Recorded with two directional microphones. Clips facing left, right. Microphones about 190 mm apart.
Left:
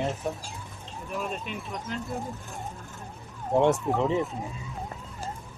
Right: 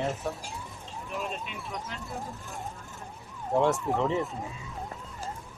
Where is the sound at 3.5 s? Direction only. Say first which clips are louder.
Left 3 dB; 20° left (ahead or behind).